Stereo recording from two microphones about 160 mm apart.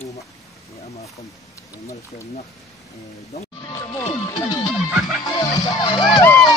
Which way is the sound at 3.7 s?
20° left (ahead or behind).